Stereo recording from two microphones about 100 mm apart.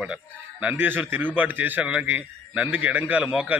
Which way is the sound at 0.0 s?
10° right (ahead or behind).